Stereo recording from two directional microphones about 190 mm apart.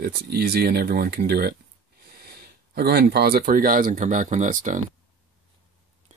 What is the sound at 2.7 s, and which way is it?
Speech, 55° right (ahead or behind).